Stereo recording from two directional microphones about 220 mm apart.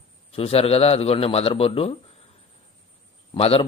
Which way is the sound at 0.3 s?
25° left (ahead or behind).